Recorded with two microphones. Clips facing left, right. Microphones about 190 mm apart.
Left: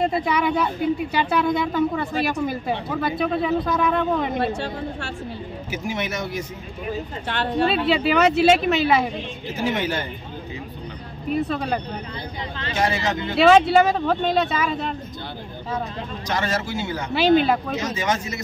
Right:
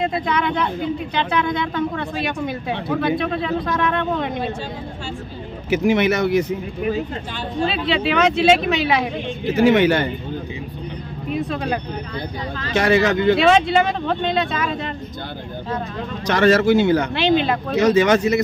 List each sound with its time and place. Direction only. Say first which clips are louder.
0.0 s speech: even; 5° left (ahead or behind)
5.7 s speech: right 11 dB; 70° right (ahead or behind)
7.2 s speech: left 3 dB; 70° left (ahead or behind)
7.7 s speech: even; 5° left (ahead or behind)
9.5 s speech: right 10 dB; 70° right (ahead or behind)
11.3 s speech: even; centre (ahead or behind)
12.7 s speech: right 7 dB; 65° right (ahead or behind)
13.4 s speech: left 1 dB; 5° left (ahead or behind)
16.3 s speech: right 11 dB; 70° right (ahead or behind)
17.4 s speech: left 1 dB; 5° left (ahead or behind)
17.7 s speech: right 10 dB; 65° right (ahead or behind)